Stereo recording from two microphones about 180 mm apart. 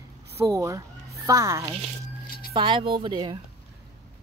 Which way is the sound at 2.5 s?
30° right (ahead or behind).